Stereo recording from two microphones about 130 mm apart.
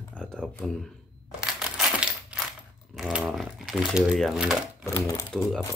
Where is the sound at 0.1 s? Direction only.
5° left (ahead or behind).